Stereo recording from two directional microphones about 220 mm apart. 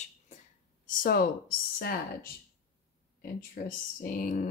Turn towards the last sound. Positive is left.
turn(degrees=40)  # may be behind; listen again after turning